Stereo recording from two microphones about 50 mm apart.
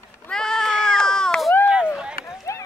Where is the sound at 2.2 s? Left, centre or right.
Left.